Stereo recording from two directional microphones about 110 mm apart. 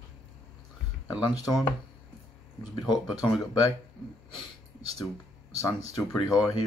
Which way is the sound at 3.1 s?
30° left (ahead or behind).